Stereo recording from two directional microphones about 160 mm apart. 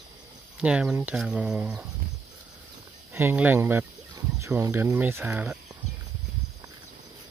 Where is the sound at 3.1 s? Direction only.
10° right (ahead or behind).